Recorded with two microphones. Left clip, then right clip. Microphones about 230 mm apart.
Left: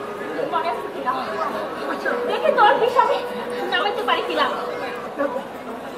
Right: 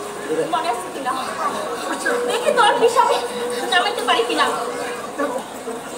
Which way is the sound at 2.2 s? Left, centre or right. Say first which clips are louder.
Left 1 dB; right.